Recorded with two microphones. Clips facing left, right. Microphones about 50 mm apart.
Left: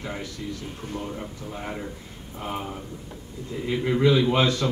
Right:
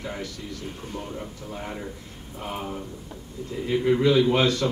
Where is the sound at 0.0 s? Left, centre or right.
Centre.